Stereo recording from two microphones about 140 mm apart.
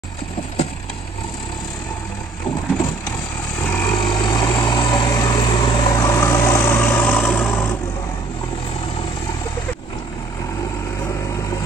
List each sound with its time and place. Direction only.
3.6 s vehicle: 15° left (ahead or behind)
3.9 s vehicle: 30° left (ahead or behind); by 7.7 s 15° left (ahead or behind)